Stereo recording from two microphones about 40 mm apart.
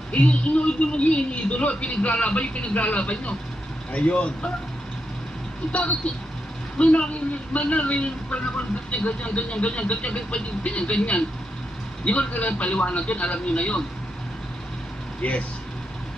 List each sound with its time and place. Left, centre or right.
0.1 s speech: left
5.7 s a man's voice: left
15.2 s speech: left